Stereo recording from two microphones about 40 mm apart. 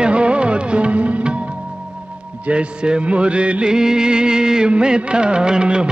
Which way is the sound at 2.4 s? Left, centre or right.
Right.